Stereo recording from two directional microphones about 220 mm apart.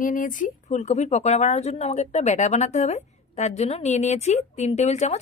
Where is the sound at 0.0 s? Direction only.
40° left (ahead or behind).